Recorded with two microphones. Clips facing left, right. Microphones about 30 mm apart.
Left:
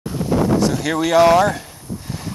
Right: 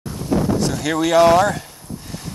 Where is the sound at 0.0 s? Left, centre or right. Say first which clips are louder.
Left 5 dB; centre.